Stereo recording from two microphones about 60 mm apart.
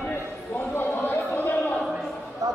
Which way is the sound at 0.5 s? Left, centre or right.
Left.